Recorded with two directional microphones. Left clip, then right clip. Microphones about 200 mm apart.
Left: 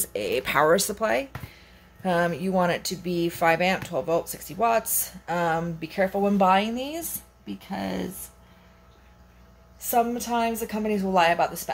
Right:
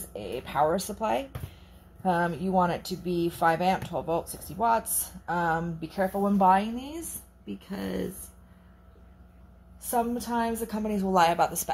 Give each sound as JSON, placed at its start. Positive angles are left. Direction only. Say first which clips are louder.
{"t": 0.1, "sound": "speech", "louder": "left 8 dB", "side_deg": 30}
{"t": 9.8, "sound": "a woman's voice", "louder": "left 5 dB", "side_deg": 5}